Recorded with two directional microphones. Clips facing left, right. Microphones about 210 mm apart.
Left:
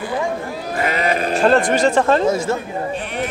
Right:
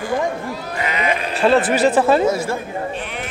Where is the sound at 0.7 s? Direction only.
45° left (ahead or behind).